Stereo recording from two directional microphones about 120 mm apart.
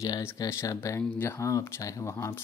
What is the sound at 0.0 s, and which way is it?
Speech, 25° left (ahead or behind).